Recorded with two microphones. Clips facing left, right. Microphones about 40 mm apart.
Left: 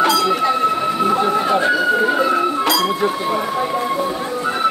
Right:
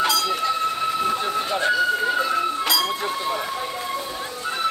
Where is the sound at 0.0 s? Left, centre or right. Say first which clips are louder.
Left 6 dB; left.